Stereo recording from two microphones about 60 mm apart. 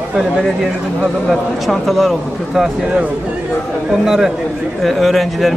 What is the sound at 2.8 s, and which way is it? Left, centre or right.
Speech, right.